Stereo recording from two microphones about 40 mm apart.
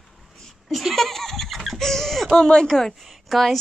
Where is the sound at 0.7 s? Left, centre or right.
Centre.